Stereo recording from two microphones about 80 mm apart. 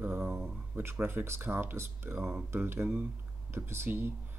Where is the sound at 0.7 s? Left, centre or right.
Right.